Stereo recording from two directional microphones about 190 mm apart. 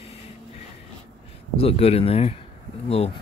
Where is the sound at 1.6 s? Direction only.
30° left (ahead or behind).